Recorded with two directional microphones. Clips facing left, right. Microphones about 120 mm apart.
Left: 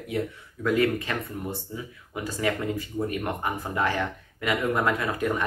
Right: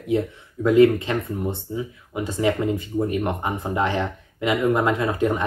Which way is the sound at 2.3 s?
20° right (ahead or behind).